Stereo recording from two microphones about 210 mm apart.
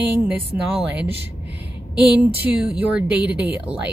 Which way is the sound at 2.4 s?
5° right (ahead or behind).